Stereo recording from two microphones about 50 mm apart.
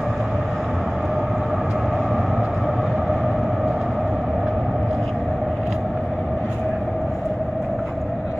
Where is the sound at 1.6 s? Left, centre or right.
Centre.